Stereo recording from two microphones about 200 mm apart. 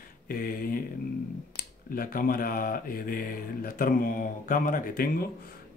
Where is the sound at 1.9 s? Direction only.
45° left (ahead or behind).